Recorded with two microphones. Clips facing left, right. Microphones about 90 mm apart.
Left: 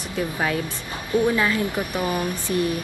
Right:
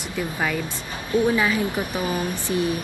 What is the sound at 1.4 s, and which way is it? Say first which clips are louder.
A woman's voice: even; 20° right (ahead or behind).